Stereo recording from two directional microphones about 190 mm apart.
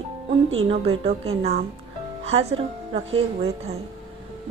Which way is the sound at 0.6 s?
30° right (ahead or behind).